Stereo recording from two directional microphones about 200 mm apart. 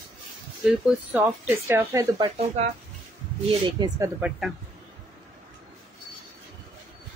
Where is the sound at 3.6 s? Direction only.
20° right (ahead or behind).